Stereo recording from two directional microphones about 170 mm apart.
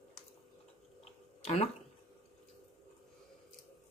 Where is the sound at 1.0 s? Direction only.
35° left (ahead or behind).